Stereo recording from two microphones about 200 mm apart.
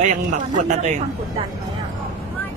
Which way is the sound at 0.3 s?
35° right (ahead or behind).